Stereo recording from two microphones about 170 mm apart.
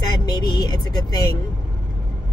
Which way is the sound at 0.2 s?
25° left (ahead or behind).